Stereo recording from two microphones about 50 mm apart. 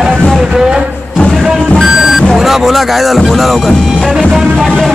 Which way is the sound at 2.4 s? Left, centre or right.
Centre.